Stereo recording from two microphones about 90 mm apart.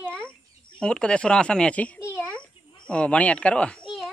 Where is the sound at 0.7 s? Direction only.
10° left (ahead or behind).